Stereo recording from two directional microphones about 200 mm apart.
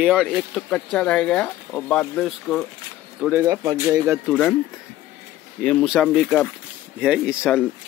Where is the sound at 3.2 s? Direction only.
10° right (ahead or behind).